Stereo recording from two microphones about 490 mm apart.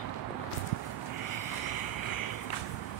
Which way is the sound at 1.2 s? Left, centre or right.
Left.